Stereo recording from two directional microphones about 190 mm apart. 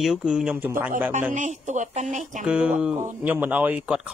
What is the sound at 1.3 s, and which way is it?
Speech, 40° right (ahead or behind).